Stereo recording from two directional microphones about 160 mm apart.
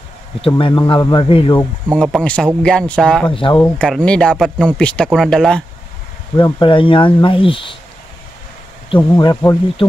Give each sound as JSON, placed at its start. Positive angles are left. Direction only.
{"t": 0.5, "sound": "speech", "side_deg": 30}
{"t": 2.0, "sound": "speech", "side_deg": 5}
{"t": 3.3, "sound": "speech", "side_deg": 30}
{"t": 3.6, "sound": "speech", "side_deg": 5}
{"t": 6.3, "sound": "speech", "side_deg": 30}
{"t": 8.9, "sound": "speech", "side_deg": 25}